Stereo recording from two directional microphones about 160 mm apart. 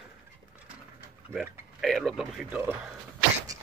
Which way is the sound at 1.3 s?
Centre (ahead or behind).